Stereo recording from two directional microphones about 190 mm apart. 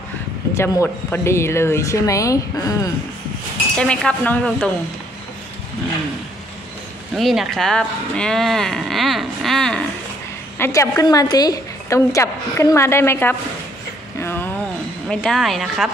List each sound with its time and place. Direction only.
0.6 s a woman's voice: 15° left (ahead or behind)
3.7 s speech: 5° left (ahead or behind)
7.2 s speech: centre (ahead or behind)
10.6 s a woman's voice: 15° left (ahead or behind)
14.2 s a sound: 10° left (ahead or behind)
15.0 s speech: centre (ahead or behind)